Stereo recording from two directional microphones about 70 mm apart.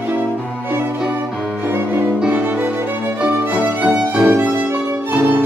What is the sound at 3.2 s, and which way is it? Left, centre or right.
Music, centre.